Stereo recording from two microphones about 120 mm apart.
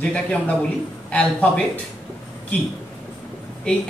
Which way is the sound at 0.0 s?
10° left (ahead or behind).